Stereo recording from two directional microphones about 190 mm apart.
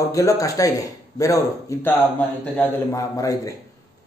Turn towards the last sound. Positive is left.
turn(degrees=15)  # may be behind; listen again after turning